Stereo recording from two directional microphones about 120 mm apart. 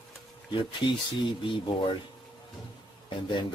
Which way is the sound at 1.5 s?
40° left (ahead or behind).